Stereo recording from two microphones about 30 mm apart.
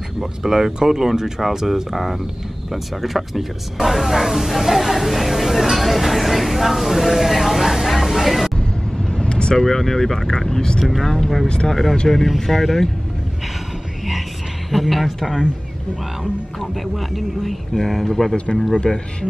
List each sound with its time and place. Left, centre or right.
0.2 s speech: centre
9.1 s vehicle: left
9.6 s speech: centre
11.0 s speech: centre
11.4 s a man's voice: left
11.7 s speech: centre
14.7 s speech: centre
16.5 s speech: centre
18.3 s a man's voice: left